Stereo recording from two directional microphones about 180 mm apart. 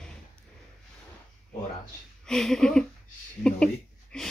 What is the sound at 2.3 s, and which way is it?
Speech, centre (ahead or behind).